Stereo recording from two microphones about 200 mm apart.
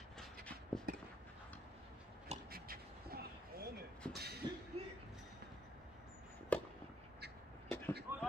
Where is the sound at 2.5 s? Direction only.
50° right (ahead or behind).